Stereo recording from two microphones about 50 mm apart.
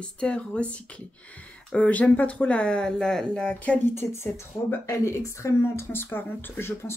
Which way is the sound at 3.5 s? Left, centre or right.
Left.